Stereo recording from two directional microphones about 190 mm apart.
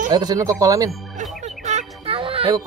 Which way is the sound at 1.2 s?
40° right (ahead or behind).